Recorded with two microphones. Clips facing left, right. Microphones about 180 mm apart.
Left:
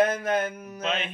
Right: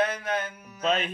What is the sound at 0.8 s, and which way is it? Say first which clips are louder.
Speech: right 3 dB; 40° right (ahead or behind).